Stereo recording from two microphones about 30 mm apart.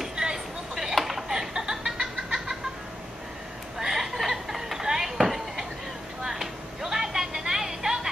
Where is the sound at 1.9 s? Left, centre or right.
Centre.